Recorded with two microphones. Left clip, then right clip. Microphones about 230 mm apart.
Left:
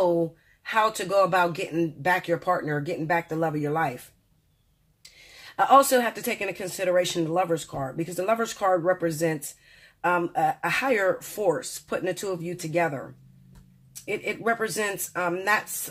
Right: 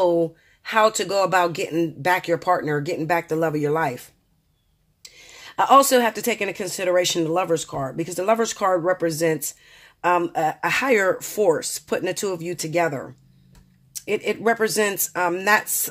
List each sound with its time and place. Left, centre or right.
0.7 s speech: right
5.1 s speech: right
14.0 s speech: right